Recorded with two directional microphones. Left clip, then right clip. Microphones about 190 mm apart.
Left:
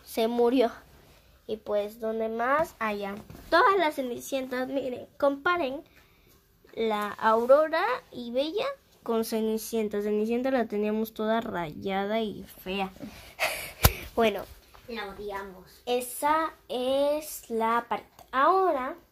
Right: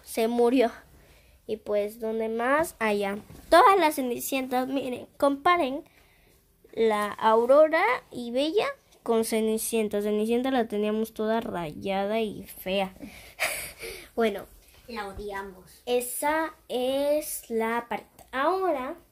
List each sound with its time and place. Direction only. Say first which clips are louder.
0.1 s speech: right 1 dB; 20° right (ahead or behind)
2.5 s a woman's voice: right 2 dB; 45° right (ahead or behind); by 12.4 s 20° right (ahead or behind)
12.6 s a woman's voice: right 4 dB; 40° right (ahead or behind)
13.4 s a sound: left 3 dB; 10° right (ahead or behind)
15.8 s female singing: right 1 dB; 10° right (ahead or behind)